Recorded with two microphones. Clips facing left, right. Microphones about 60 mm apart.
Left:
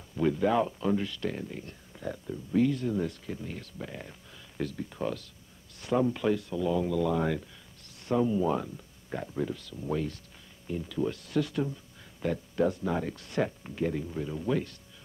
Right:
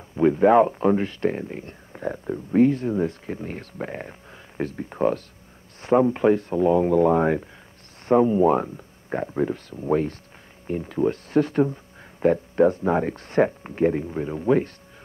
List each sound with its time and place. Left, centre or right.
0.1 s speech: right